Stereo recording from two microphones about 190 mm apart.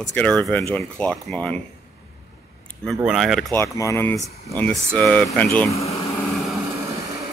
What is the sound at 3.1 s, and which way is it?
Speech, centre (ahead or behind).